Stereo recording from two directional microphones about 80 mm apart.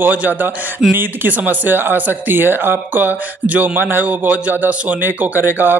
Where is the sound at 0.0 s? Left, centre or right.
Right.